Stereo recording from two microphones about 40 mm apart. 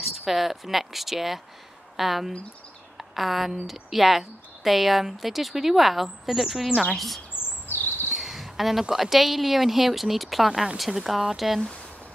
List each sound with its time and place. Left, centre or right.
0.0 s a woman's voice: centre
7.4 s bird vocalization: right
8.1 s a sound: centre
8.9 s a woman's voice: centre